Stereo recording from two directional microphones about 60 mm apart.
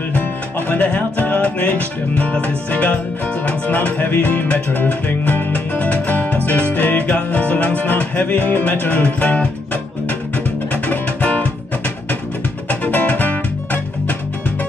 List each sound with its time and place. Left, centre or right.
0.1 s music: left
10.9 s music: left
12.6 s music: left